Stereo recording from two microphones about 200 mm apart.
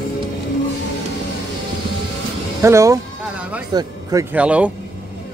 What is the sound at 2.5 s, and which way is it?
Speech, 15° right (ahead or behind).